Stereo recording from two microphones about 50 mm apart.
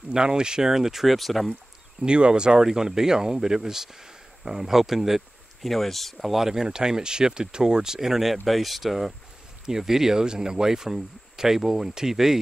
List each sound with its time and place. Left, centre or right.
0.1 s speech: centre
2.0 s speech: centre